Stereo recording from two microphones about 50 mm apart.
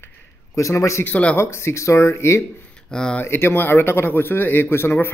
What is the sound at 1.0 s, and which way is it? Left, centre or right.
Speech, left.